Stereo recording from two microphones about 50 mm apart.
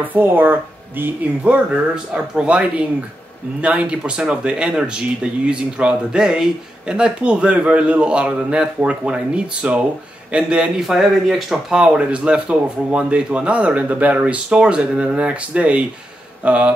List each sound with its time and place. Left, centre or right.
0.0 s speech: right
1.4 s speech: right
2.1 s a man's voice: centre
10.8 s a man's voice: centre
11.7 s a man's voice: right
14.3 s a man's voice: centre